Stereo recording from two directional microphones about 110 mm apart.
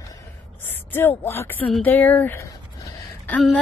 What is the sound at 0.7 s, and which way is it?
Speech, 20° left (ahead or behind).